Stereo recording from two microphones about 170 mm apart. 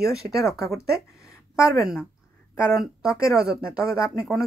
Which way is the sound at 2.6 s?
5° right (ahead or behind).